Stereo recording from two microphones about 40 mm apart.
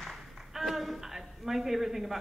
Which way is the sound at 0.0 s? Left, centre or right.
Centre.